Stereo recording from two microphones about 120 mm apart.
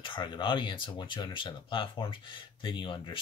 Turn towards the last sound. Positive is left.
turn(degrees=45)  # may be behind; listen again after turning